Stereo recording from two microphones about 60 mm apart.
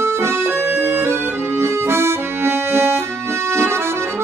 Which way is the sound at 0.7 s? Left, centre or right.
Right.